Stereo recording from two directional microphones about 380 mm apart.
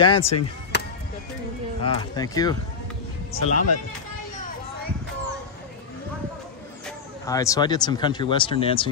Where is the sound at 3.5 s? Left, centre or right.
Left.